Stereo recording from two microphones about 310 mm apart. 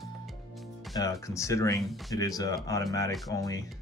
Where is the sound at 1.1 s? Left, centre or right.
Centre.